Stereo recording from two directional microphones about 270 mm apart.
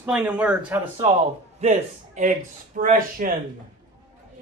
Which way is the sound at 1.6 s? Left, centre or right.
Right.